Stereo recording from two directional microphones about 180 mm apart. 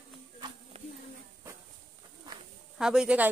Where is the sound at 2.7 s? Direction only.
5° right (ahead or behind).